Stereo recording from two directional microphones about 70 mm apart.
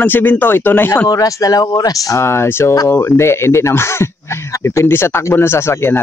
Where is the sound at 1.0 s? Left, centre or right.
Left.